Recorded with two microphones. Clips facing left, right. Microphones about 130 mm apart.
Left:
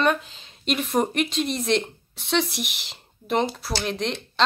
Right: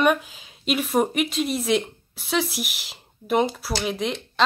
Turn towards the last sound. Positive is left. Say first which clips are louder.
# right 1 dB
turn(degrees=-5)  # may be behind; listen again after turning